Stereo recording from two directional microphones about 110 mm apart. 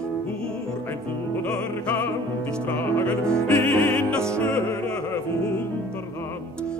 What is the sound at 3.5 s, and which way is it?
Opera, 20° left (ahead or behind).